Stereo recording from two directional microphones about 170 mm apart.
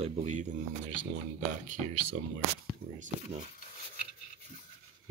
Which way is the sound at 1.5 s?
50° right (ahead or behind).